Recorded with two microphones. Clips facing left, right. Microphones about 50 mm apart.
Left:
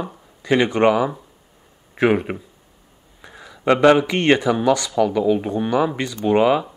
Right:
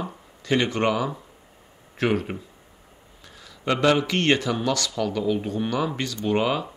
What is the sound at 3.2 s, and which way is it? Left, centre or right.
Speech, centre.